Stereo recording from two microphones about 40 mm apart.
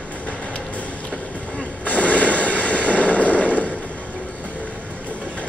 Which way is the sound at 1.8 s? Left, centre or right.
Left.